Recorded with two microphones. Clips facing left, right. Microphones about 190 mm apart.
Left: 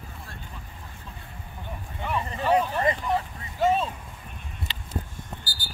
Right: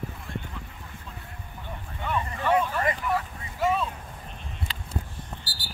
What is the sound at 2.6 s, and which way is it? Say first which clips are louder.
Vehicle: left 2 dB; 25° left (ahead or behind).